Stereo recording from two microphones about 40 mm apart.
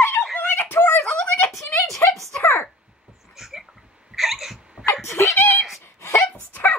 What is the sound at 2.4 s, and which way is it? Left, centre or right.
Speech, left.